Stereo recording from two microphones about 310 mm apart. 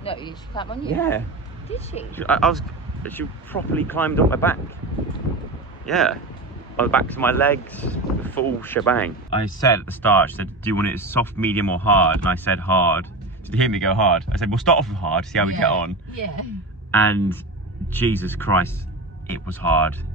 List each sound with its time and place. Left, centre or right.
0.0 s speech: centre
1.7 s speech: left
2.1 s speech: centre
5.9 s speech: centre
16.9 s speech: centre